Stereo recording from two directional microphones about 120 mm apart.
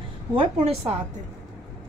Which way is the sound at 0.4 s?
55° right (ahead or behind).